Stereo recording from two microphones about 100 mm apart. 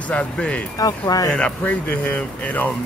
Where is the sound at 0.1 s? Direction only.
10° left (ahead or behind).